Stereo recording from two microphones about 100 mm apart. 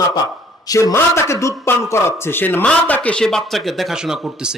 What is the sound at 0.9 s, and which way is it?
A man's voice, 25° left (ahead or behind).